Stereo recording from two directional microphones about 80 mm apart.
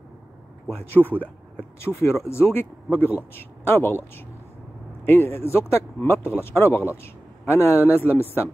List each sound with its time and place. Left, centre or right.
0.7 s speech: left
5.0 s speech: left